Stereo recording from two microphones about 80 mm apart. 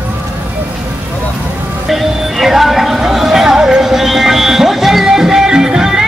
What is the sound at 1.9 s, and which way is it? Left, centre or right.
Music, centre.